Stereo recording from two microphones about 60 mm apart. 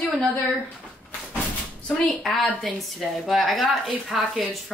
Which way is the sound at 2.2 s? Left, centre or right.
Centre.